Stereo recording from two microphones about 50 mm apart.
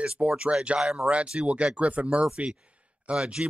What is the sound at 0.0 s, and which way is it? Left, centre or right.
Speech, right.